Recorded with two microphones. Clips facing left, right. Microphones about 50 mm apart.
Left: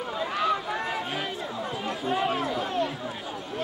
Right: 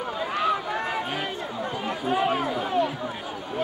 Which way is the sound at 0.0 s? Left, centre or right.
Centre.